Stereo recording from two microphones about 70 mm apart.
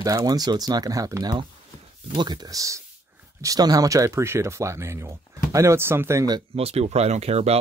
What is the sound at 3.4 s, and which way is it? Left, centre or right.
Speech, right.